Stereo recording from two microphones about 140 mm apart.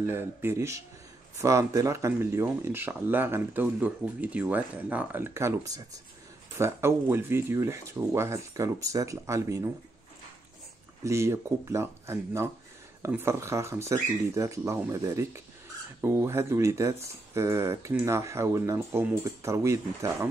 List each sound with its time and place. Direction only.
0.0 s speech: 15° right (ahead or behind)
11.1 s speech: 20° right (ahead or behind)